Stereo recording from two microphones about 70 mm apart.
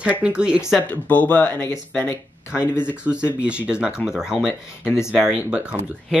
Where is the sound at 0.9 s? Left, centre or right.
Left.